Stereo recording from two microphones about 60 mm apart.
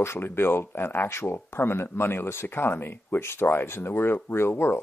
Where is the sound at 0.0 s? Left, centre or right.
Left.